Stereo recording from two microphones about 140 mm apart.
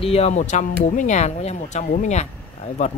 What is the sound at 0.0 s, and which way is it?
Speech, 45° left (ahead or behind).